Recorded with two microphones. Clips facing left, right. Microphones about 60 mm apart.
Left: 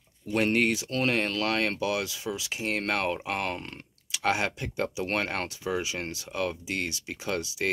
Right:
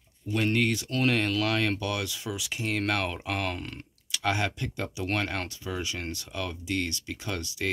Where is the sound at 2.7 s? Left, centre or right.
Centre.